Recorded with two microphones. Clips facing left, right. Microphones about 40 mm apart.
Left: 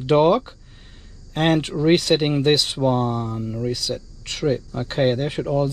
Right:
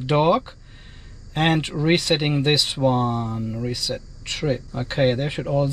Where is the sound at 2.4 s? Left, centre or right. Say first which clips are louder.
Left 3 dB; right.